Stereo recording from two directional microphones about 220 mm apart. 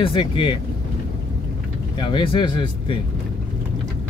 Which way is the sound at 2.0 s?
20° left (ahead or behind).